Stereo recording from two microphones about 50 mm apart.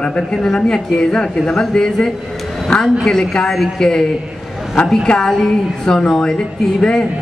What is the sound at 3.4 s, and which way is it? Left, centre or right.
Speech, centre.